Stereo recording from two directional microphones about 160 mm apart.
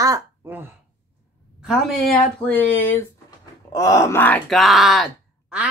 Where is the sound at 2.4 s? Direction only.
10° left (ahead or behind).